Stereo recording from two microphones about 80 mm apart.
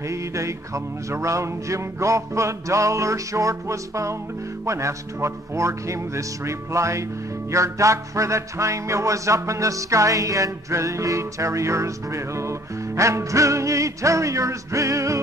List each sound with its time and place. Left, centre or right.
0.1 s music: right